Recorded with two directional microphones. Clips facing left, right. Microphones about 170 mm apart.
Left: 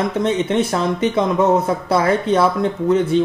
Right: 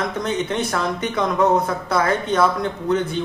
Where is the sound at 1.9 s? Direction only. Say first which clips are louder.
Left 4 dB; 30° left (ahead or behind).